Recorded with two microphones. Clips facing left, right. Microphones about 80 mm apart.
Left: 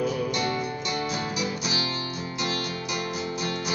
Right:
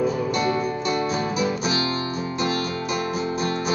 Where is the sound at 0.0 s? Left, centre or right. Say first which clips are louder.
Right 4 dB; right.